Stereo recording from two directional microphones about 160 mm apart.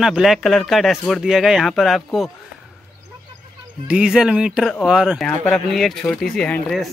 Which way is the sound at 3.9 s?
5° right (ahead or behind).